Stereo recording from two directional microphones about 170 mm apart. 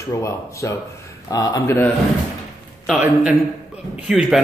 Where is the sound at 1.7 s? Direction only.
10° left (ahead or behind).